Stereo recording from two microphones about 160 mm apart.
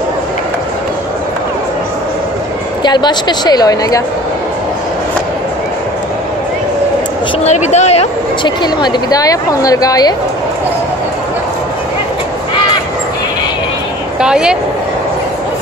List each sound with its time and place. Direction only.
2.8 s speech: 25° left (ahead or behind)
7.4 s speech: 45° left (ahead or behind)
8.5 s speech: 25° left (ahead or behind)
14.2 s speech: 5° right (ahead or behind)